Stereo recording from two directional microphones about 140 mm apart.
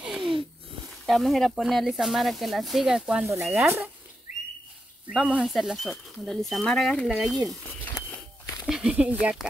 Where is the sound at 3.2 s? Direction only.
20° right (ahead or behind).